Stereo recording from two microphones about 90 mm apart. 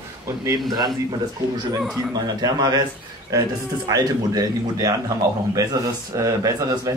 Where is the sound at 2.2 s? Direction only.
45° right (ahead or behind).